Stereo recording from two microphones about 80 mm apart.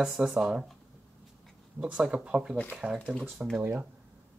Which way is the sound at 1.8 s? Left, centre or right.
Centre.